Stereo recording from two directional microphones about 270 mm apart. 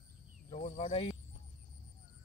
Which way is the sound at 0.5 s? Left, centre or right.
Left.